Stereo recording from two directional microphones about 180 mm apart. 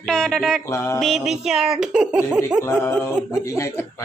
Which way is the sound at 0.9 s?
Centre (ahead or behind).